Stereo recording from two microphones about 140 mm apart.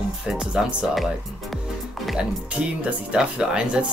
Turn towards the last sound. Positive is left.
turn(degrees=-5)  # may be behind; listen again after turning